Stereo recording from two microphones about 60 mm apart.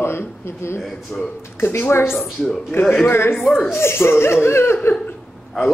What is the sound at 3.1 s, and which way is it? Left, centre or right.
Speech, left.